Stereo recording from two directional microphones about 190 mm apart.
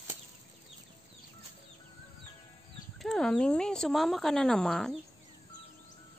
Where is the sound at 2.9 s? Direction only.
Centre (ahead or behind).